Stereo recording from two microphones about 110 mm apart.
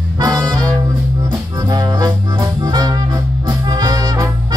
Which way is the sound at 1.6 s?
40° right (ahead or behind).